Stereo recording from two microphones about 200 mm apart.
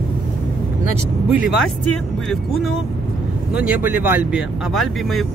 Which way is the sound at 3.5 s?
5° right (ahead or behind).